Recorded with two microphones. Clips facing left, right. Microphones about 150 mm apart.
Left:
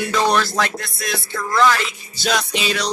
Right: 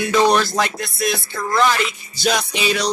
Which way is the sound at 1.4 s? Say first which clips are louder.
Left 1 dB; 20° right (ahead or behind).